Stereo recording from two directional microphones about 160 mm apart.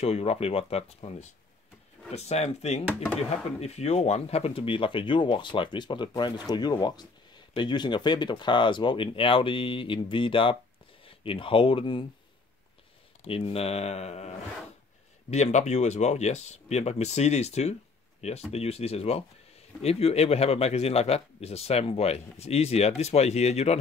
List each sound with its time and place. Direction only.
0.0 s speech: 40° left (ahead or behind)
13.2 s speech: 40° left (ahead or behind)